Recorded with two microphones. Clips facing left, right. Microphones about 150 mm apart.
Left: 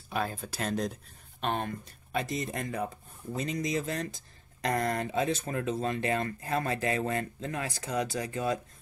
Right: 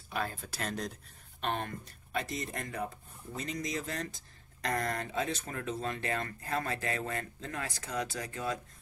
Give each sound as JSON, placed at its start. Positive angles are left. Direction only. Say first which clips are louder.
{"t": 0.1, "sound": "speech", "louder": "left 4 dB", "side_deg": 15}